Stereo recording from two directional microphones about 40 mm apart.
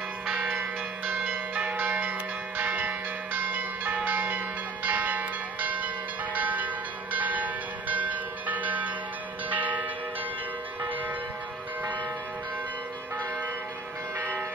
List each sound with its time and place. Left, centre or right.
0.5 s bell: right
1.5 s change ringing: right
1.8 s music: right
4.8 s church bell: right
14.1 s church bell: right